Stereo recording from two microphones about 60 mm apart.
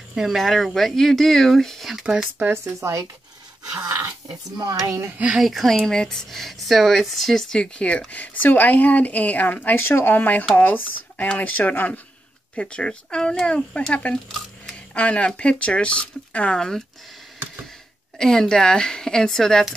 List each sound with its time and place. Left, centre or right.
0.1 s speech: centre
0.4 s speech: centre
2.3 s speech: right
2.6 s speech: right
5.4 s speech: centre
5.8 s speech: centre; by 12.0 s left
12.5 s speech: centre
13.7 s speech: centre
18.1 s speech: centre